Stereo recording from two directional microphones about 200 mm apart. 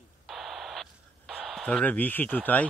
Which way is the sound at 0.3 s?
Centre (ahead or behind).